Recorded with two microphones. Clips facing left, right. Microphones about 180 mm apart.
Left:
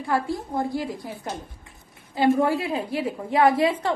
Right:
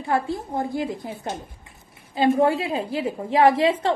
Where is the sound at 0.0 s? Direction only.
25° right (ahead or behind).